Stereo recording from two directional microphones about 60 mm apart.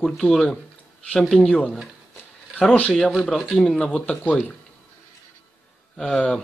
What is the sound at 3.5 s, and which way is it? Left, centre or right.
Speech, centre.